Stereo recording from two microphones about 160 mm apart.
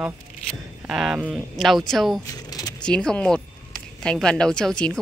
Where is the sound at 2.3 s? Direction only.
20° left (ahead or behind).